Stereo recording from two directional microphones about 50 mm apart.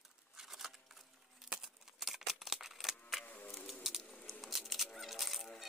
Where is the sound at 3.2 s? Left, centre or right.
Left.